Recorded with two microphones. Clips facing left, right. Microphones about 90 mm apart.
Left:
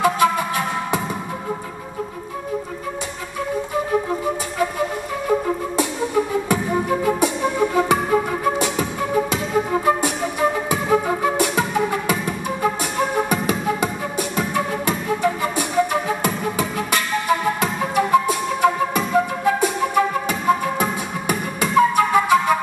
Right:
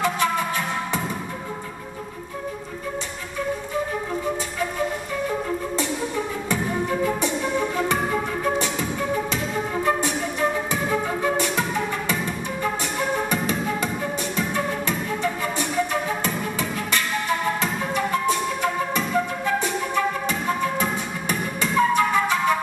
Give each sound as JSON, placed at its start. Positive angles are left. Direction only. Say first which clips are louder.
{"t": 0.0, "sound": "music", "louder": "left 5 dB", "side_deg": 10}
{"t": 6.5, "sound": "music", "louder": "left 3 dB", "side_deg": 10}
{"t": 14.3, "sound": "flute", "louder": "left 4 dB", "side_deg": 5}